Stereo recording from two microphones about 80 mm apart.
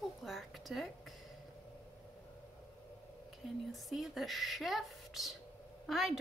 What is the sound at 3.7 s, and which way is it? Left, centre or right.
A woman's voice, centre.